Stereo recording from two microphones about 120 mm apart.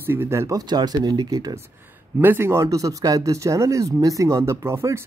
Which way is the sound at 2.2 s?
20° right (ahead or behind).